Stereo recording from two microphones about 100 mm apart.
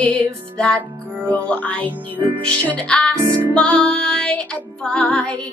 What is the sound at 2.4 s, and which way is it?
Music, 10° left (ahead or behind).